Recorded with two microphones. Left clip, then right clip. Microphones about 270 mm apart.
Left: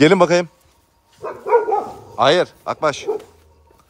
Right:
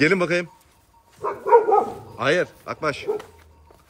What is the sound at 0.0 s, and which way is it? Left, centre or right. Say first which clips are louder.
Speech: left 7 dB; centre.